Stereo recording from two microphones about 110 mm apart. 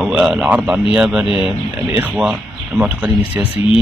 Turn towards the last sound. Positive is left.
turn(degrees=-15)  # may be behind; listen again after turning